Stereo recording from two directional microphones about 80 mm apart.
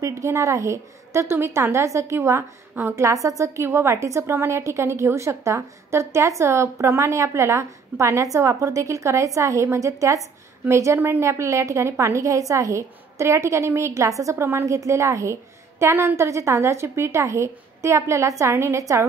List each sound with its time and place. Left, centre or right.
0.2 s a woman's voice: right